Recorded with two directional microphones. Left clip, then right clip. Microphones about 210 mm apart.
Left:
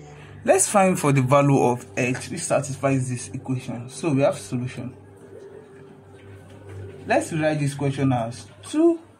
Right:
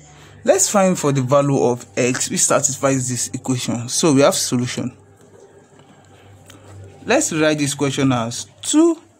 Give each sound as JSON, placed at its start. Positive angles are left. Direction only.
{"t": 0.5, "sound": "speech", "side_deg": -25}
{"t": 2.0, "sound": "speech", "side_deg": -35}
{"t": 7.1, "sound": "speech", "side_deg": -40}